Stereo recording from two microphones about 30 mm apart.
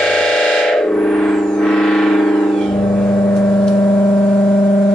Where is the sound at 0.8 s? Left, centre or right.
Left.